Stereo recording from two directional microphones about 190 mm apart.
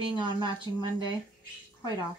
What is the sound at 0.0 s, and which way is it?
Speech, 25° right (ahead or behind).